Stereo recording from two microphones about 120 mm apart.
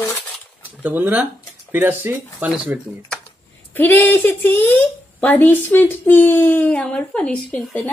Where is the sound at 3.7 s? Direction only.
15° left (ahead or behind).